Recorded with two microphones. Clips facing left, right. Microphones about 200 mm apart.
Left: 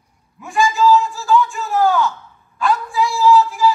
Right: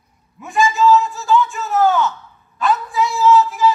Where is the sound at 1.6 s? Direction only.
20° right (ahead or behind).